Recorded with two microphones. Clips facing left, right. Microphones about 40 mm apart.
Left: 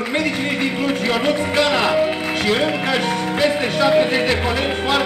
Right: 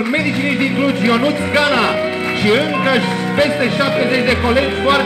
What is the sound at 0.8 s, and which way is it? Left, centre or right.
Music, centre.